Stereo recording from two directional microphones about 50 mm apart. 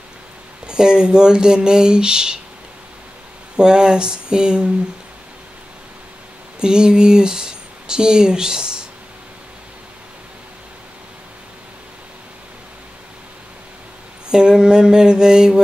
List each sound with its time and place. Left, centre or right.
0.7 s speech: centre
3.5 s speech: centre
6.6 s speech: centre
14.3 s speech: centre